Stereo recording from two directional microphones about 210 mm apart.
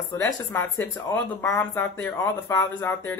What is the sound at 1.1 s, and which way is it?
Speech, 15° left (ahead or behind).